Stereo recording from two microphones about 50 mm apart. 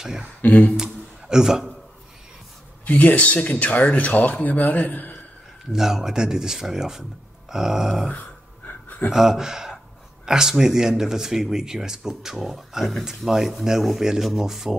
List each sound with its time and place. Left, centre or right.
0.0 s speech: centre
0.4 s speech: left
0.7 s speech: centre
2.8 s speech: left
5.7 s speech: centre
8.1 s a sound: left
9.1 s speech: centre